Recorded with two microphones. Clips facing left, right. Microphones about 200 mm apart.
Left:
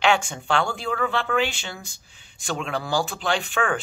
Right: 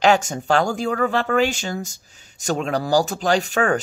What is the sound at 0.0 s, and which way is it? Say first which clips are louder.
Speech: right 4 dB; 40° right (ahead or behind).